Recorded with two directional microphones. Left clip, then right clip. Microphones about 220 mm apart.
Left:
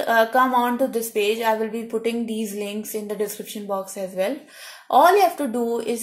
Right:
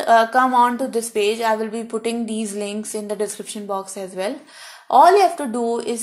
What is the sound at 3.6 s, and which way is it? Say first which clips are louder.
Speech: right 1 dB; 30° right (ahead or behind).